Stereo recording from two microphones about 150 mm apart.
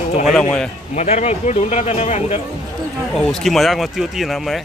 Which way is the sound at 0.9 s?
45° left (ahead or behind).